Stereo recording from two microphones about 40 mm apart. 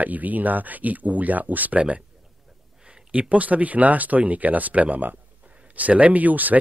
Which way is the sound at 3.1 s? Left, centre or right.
Right.